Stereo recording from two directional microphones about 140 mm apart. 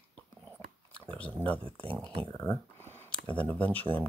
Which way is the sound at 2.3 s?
15° left (ahead or behind).